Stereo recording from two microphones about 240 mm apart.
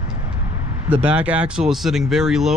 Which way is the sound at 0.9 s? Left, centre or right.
Centre.